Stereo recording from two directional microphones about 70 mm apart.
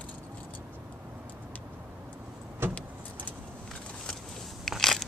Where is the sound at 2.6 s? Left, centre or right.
Right.